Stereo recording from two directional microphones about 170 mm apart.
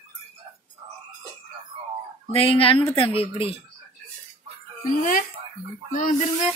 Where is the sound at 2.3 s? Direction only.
35° left (ahead or behind).